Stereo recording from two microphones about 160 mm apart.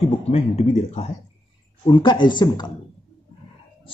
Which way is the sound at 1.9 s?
30° left (ahead or behind).